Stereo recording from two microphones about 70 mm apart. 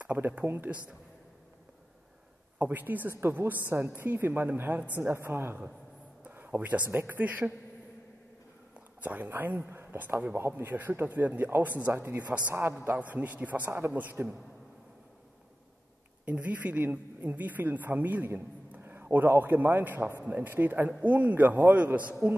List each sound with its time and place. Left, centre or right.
0.0 s speech: right
2.6 s speech: right
5.1 s a woman's voice: right
6.2 s a sound: right
7.0 s speech: right
8.7 s a woman's voice: right
11.9 s a woman's voice: right
16.3 s speech: right